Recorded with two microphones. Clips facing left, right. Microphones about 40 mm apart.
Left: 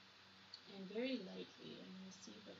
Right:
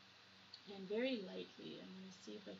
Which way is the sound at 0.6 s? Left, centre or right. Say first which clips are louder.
Right 3 dB; right.